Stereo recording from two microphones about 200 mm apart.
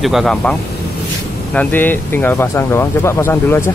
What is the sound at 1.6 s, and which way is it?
Speech, 10° left (ahead or behind).